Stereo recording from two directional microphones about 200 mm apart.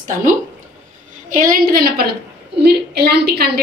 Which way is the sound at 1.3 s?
40° right (ahead or behind).